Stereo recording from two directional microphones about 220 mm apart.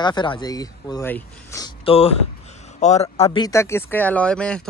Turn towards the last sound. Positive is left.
turn(degrees=5)  # may be behind; listen again after turning